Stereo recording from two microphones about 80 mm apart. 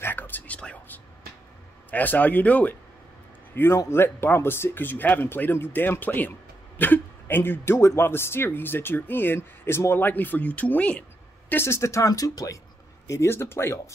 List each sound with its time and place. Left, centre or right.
0.0 s a sound: left
0.6 s whispering: centre
1.9 s speech: left
3.5 s speech: left